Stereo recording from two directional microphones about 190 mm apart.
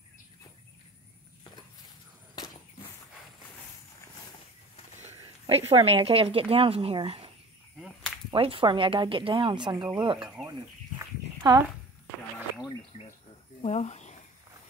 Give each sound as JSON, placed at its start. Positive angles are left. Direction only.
{"t": 5.0, "sound": "speech", "side_deg": -35}
{"t": 10.1, "sound": "speech", "side_deg": -5}
{"t": 11.0, "sound": "livestock", "side_deg": -20}
{"t": 13.6, "sound": "a sound", "side_deg": 35}